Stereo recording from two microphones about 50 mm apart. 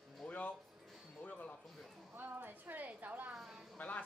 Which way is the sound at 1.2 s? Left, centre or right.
Left.